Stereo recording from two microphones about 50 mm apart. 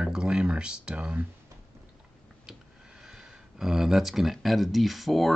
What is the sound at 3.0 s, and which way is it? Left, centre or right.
Speech, centre.